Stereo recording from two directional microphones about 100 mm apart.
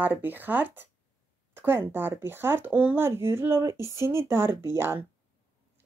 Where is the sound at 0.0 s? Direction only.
20° right (ahead or behind).